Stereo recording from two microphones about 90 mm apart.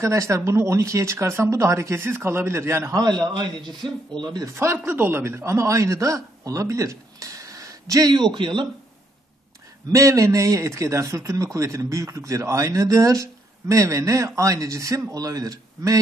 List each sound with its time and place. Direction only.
0.0 s a man's voice: 35° right (ahead or behind)
2.9 s a man's voice: 50° right (ahead or behind)
4.7 s a man's voice: 20° right (ahead or behind); by 8.1 s 40° right (ahead or behind)
8.1 s a man's voice: 65° right (ahead or behind)
9.9 s a man's voice: 35° right (ahead or behind)